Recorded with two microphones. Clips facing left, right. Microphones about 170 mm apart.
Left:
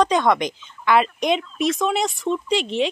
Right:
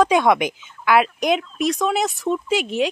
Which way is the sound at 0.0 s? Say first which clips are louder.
Right 2 dB; 10° right (ahead or behind).